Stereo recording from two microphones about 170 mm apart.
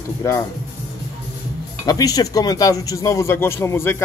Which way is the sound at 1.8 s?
20° left (ahead or behind).